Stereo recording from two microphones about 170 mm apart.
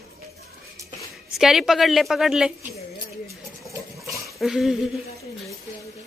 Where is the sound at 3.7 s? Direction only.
20° right (ahead or behind).